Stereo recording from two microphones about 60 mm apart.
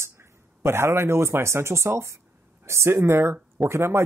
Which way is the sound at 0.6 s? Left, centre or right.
Right.